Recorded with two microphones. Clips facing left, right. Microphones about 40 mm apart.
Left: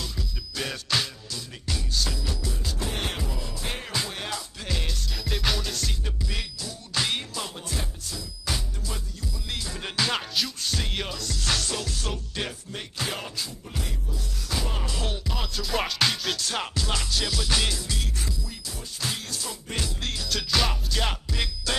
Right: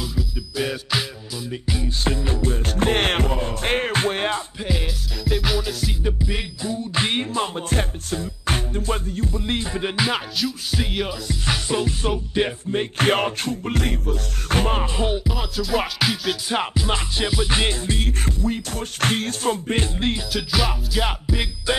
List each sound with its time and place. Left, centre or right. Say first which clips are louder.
0.0 s music: right 7 dB; centre
2.0 s music: right 8 dB; right
4.6 s music: right 2 dB; centre; by 9.8 s right
9.8 s music: right 3 dB; centre
10.3 s music: right 4 dB; centre; by 12.8 s right
12.9 s music: right 11 dB; right
15.0 s music: right 9 dB; centre
15.3 s music: right 5 dB; centre
16.4 s music: right 6 dB; right
20.2 s music: right 3 dB; centre